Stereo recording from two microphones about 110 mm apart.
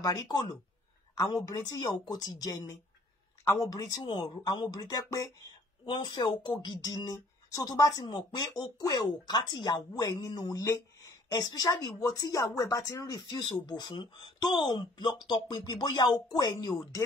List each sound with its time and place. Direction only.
0.0 s speech: 35° left (ahead or behind)
5.9 s speech: 45° left (ahead or behind)